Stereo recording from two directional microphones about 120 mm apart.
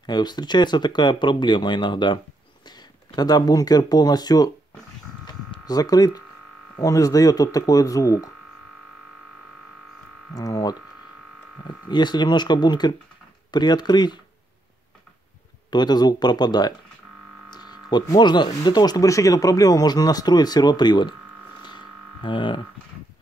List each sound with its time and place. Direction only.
0.0 s speech: 35° left (ahead or behind)
5.2 s electric shaver: 35° left (ahead or behind)
6.8 s speech: 30° left (ahead or behind)
10.3 s speech: 30° left (ahead or behind)
15.7 s speech: 35° left (ahead or behind)
17.5 s a sound: 35° left (ahead or behind)
18.0 s speech: 35° left (ahead or behind)
21.6 s a sound: 40° left (ahead or behind)